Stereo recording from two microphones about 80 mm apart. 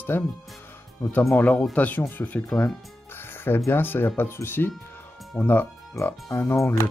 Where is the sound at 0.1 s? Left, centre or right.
Left.